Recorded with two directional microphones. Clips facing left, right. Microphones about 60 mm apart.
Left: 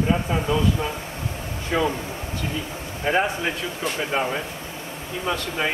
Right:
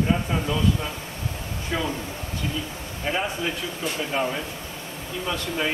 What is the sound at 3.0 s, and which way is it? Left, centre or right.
Speech, left.